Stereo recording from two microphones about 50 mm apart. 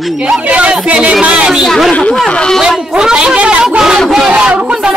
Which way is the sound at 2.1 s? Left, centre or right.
Centre.